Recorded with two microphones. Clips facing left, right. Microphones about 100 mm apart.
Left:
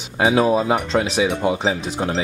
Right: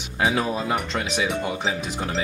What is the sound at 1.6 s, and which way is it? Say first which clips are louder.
Speech: left 5 dB; 30° left (ahead or behind).